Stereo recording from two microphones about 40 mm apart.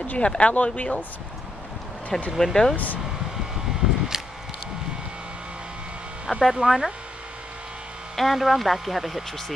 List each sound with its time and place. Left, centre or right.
0.0 s speech: left
2.0 s speech: left
2.3 s speech: centre
2.7 s speech: left
4.1 s a sound: centre
6.3 s speech: centre
8.2 s speech: centre